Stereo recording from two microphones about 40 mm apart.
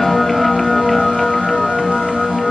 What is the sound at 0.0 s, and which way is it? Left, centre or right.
Music, centre.